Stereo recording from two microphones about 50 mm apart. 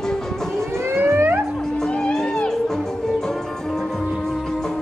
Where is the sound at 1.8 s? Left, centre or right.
Centre.